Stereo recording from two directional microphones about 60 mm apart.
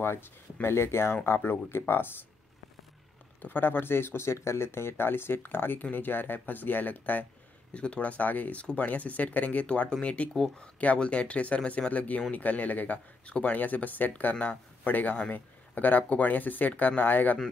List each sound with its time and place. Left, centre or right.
0.0 s speech: left
3.4 s speech: left